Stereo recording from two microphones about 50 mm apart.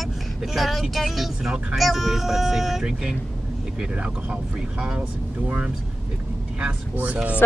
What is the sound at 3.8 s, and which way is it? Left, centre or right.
Speech, right.